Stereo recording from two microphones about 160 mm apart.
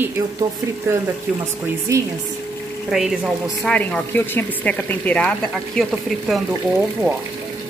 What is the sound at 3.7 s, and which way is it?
Speech, 10° left (ahead or behind).